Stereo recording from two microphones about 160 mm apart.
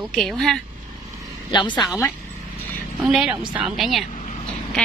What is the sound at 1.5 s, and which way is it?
Speech, 30° left (ahead or behind).